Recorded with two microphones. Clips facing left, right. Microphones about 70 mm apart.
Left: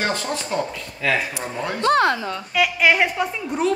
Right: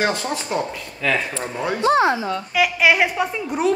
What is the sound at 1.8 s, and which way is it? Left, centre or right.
Speech, left.